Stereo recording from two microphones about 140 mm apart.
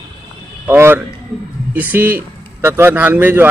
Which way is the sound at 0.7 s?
15° right (ahead or behind).